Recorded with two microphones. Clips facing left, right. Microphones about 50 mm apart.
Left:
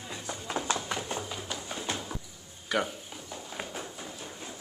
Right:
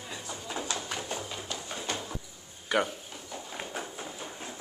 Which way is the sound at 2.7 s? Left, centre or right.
Centre.